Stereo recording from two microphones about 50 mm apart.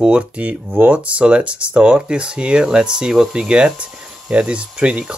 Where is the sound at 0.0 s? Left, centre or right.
Right.